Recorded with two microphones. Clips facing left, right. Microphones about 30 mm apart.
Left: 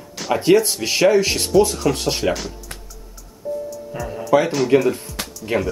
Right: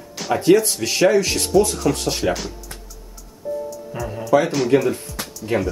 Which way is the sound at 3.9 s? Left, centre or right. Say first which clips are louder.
Even; centre.